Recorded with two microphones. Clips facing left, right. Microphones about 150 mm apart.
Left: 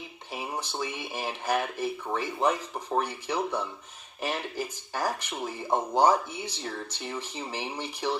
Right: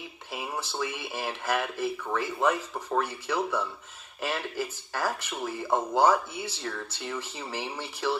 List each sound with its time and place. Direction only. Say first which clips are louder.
0.3 s speech: even; 15° left (ahead or behind)